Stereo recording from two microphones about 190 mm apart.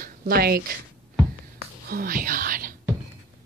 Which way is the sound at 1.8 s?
50° right (ahead or behind).